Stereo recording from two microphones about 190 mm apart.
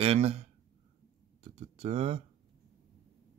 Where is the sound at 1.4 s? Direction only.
35° right (ahead or behind).